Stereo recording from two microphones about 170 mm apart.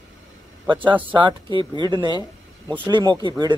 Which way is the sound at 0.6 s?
30° right (ahead or behind).